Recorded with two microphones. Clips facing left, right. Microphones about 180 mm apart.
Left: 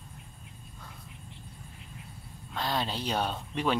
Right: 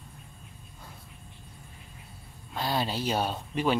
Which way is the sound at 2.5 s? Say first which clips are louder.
Right 2 dB; 5° right (ahead or behind).